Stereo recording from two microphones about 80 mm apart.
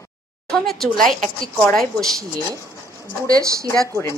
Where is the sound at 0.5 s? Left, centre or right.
Centre.